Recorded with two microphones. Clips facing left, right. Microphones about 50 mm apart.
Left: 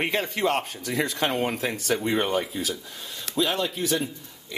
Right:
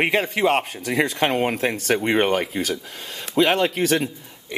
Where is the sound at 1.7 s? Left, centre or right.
Right.